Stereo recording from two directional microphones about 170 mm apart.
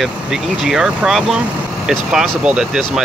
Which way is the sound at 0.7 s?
5° right (ahead or behind).